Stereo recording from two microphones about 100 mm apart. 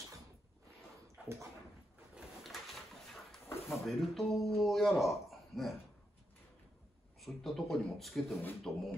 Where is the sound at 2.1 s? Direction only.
Centre (ahead or behind).